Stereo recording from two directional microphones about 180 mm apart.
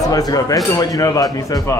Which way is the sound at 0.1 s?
20° left (ahead or behind).